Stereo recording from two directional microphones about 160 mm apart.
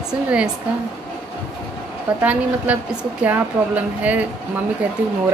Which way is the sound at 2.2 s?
10° right (ahead or behind).